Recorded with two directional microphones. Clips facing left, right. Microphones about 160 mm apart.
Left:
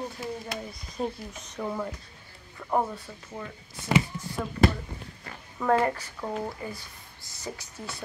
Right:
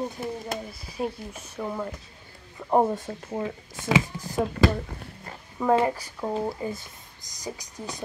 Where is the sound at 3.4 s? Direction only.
90° right.